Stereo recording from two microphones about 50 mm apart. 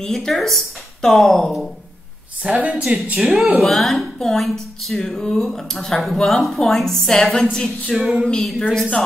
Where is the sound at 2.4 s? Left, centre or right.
Right.